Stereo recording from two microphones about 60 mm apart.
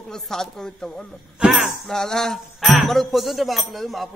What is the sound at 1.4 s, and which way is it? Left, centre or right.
Speech, centre.